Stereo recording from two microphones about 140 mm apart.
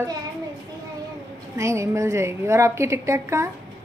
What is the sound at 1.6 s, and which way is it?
A woman's voice, 20° right (ahead or behind).